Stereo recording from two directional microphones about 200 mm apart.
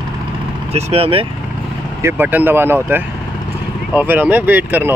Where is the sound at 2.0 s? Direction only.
10° right (ahead or behind).